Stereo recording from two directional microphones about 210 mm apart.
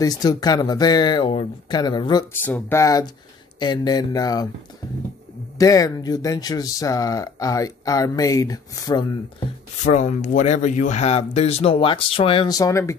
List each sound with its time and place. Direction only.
0.0 s speech: 20° left (ahead or behind)
5.6 s speech: 15° left (ahead or behind)
9.8 s speech: 35° left (ahead or behind); by 12.9 s 15° left (ahead or behind)